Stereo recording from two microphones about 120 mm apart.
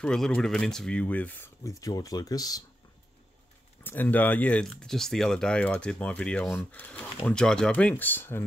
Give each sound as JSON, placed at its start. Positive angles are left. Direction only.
{"t": 0.0, "sound": "speech", "side_deg": 5}
{"t": 1.6, "sound": "speech", "side_deg": 30}
{"t": 3.8, "sound": "speech", "side_deg": 15}